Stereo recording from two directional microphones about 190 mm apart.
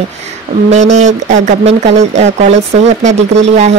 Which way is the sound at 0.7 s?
35° right (ahead or behind).